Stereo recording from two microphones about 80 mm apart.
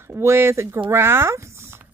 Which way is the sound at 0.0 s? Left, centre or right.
Right.